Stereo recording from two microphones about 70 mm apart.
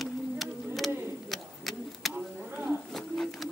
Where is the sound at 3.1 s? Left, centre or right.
Centre.